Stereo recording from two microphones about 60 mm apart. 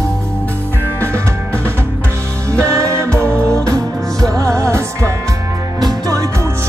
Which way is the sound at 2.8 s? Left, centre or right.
Right.